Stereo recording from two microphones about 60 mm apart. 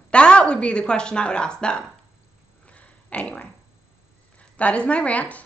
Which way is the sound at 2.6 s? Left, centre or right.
Left.